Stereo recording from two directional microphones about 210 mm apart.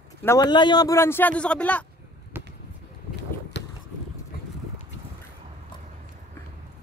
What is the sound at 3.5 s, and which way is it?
Boat, 55° left (ahead or behind).